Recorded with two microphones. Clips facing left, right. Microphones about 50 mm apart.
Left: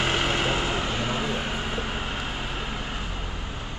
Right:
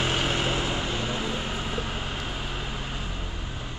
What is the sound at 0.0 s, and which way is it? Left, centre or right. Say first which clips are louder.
Vehicle: left 2 dB; left.